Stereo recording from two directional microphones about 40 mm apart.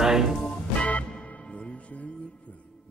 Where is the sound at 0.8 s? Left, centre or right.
Left.